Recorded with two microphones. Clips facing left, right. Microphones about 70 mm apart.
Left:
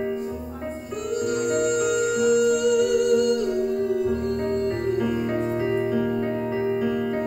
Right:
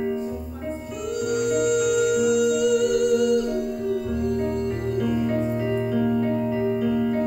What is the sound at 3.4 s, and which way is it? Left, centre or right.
Music, left.